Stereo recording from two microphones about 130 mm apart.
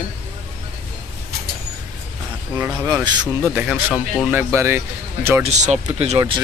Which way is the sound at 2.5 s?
15° right (ahead or behind).